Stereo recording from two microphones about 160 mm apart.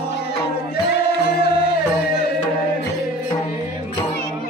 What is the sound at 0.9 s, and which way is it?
Music, 90° left.